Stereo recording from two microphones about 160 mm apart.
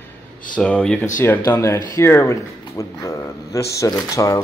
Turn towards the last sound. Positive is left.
turn(degrees=20)  # may be behind; listen again after turning